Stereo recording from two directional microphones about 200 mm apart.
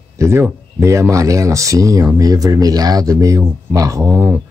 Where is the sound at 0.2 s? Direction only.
10° right (ahead or behind).